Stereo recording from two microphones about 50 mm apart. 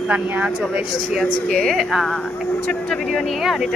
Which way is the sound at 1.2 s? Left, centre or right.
Centre.